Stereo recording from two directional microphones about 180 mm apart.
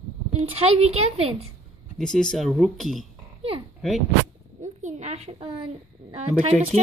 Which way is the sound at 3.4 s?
30° right (ahead or behind).